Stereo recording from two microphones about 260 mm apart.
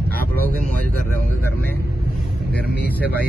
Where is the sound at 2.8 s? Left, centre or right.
Centre.